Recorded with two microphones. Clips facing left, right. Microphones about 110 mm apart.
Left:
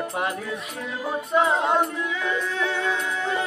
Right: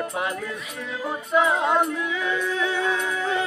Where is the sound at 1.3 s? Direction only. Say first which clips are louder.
Even; 30° left (ahead or behind).